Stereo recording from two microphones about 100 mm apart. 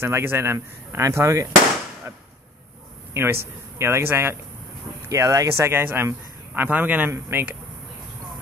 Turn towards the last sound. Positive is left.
turn(degrees=-20)  # may be behind; listen again after turning